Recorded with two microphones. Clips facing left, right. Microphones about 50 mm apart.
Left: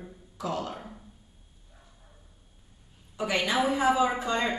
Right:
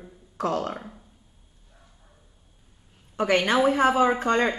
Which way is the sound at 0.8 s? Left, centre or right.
Centre.